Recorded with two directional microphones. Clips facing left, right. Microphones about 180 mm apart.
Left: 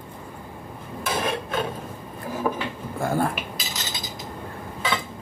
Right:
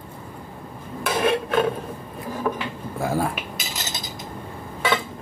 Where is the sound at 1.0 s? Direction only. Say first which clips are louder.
Right 5 dB; 70° right (ahead or behind).